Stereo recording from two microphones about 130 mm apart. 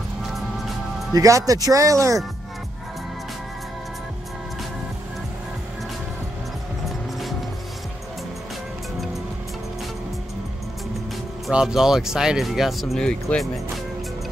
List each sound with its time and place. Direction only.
1.1 s speech: 25° right (ahead or behind)
6.9 s music: centre (ahead or behind)
11.4 s speech: 5° right (ahead or behind)